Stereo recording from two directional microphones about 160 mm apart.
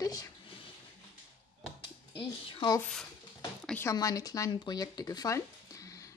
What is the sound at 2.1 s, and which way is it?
Speech, 30° left (ahead or behind).